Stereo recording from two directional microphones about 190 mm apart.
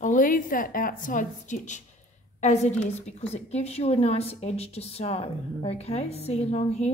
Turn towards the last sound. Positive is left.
turn(degrees=35)  # may be behind; listen again after turning